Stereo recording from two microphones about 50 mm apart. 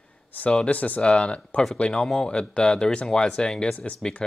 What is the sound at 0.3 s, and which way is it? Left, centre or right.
Speech, left.